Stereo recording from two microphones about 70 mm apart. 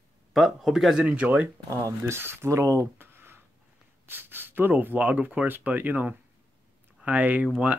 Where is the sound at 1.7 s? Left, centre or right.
Right.